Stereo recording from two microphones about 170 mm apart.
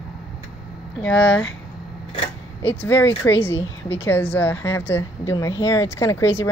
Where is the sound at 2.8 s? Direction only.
10° left (ahead or behind).